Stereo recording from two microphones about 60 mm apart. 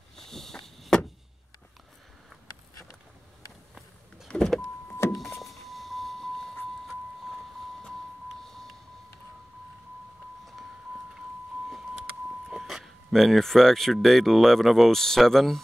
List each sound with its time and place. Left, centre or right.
0.1 s vehicle: centre
4.3 s power windows: centre
5.1 s power windows: centre
8.5 s music: centre
12.4 s speech: centre